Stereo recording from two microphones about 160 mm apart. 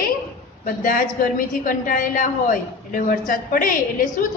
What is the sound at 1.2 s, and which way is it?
A woman's voice, 60° left (ahead or behind).